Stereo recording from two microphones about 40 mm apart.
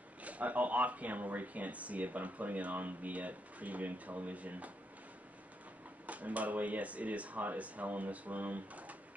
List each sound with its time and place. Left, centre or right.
0.2 s speech: right
6.0 s speech: right